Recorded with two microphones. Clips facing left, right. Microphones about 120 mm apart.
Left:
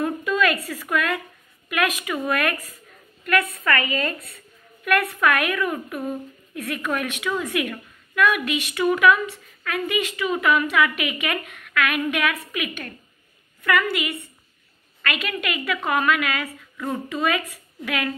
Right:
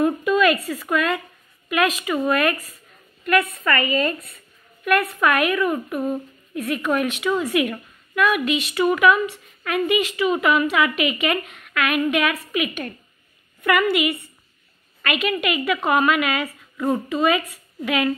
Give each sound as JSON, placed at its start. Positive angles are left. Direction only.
{"t": 0.0, "sound": "a woman's voice", "side_deg": -10}
{"t": 15.2, "sound": "speech", "side_deg": -10}
{"t": 17.1, "sound": "a woman's voice", "side_deg": -5}